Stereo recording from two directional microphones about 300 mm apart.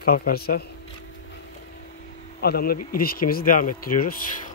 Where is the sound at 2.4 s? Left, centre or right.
Left.